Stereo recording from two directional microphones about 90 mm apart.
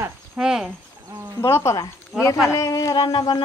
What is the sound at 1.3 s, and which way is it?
Speech, 30° left (ahead or behind).